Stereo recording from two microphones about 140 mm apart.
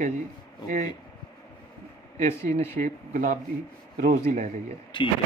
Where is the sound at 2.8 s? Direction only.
70° right (ahead or behind).